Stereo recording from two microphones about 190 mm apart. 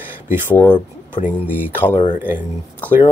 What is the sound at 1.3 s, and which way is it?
Speech, 10° right (ahead or behind).